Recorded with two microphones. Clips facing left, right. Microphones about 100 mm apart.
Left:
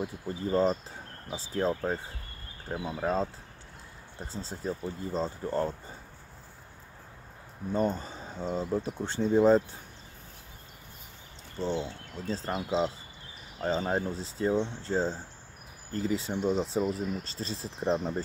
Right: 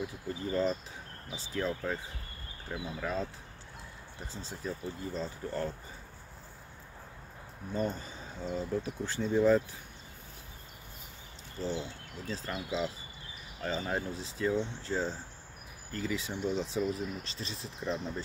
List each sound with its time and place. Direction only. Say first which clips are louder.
0.0 s speech: left 3 dB; 35° left (ahead or behind)
4.2 s speech: left 4 dB; 30° left (ahead or behind)
7.7 s speech: left 5 dB; 30° left (ahead or behind)
11.8 s speech: left 4 dB; 30° left (ahead or behind)
13.6 s speech: left 5 dB; 30° left (ahead or behind); by 18.2 s 45° left (ahead or behind)